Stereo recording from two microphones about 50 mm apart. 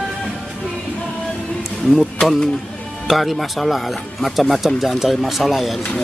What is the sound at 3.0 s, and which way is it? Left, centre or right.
Speech, centre.